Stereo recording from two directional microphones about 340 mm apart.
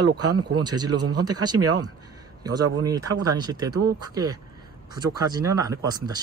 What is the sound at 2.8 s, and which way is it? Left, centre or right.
Speech, centre.